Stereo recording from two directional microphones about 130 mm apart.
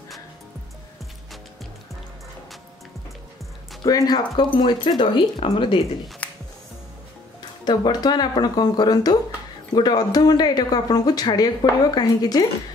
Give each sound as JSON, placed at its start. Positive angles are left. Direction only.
{"t": 3.8, "sound": "speech", "side_deg": 30}
{"t": 6.2, "sound": "music", "side_deg": 10}
{"t": 7.6, "sound": "speech", "side_deg": 30}